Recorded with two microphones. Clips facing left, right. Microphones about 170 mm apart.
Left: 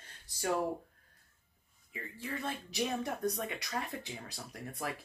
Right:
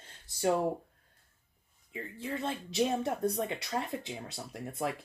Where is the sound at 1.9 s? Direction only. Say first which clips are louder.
Right 4 dB; 25° right (ahead or behind).